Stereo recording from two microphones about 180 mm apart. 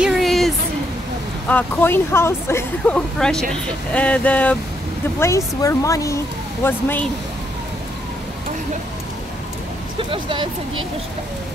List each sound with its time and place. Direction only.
0.0 s a sound: centre (ahead or behind)
1.5 s speech: 10° left (ahead or behind)
9.9 s speech: 25° right (ahead or behind)